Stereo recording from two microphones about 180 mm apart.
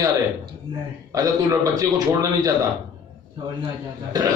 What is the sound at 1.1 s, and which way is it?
Speech, 20° right (ahead or behind).